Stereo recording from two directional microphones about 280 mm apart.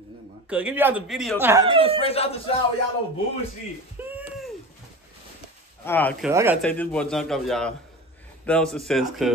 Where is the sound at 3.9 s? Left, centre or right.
Centre.